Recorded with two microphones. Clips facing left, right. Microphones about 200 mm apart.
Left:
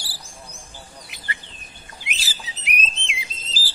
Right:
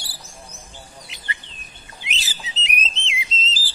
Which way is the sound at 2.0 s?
20° right (ahead or behind).